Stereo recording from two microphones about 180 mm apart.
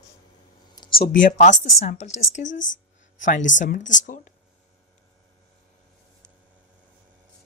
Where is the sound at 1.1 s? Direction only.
45° left (ahead or behind).